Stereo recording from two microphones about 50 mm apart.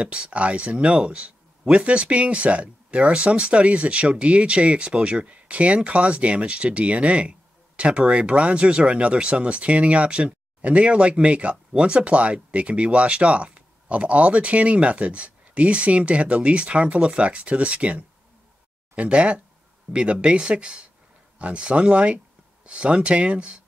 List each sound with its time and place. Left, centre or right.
0.0 s speech: right